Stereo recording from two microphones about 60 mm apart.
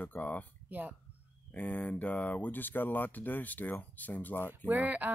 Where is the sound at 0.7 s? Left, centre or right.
Right.